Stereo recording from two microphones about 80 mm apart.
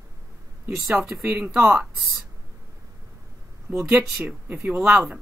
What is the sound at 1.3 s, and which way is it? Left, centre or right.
Speech, centre.